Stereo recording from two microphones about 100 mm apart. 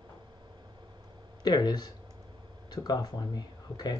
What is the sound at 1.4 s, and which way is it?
Speech, 45° left (ahead or behind).